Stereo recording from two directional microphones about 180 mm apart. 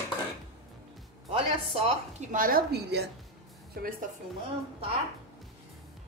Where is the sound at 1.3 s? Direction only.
30° right (ahead or behind).